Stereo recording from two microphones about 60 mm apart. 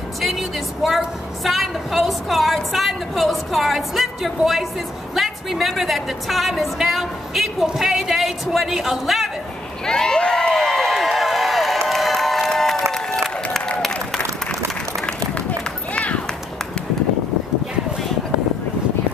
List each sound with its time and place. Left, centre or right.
0.2 s a woman's voice: centre
9.8 s crowd: centre
12.9 s a sound: centre
15.9 s run: left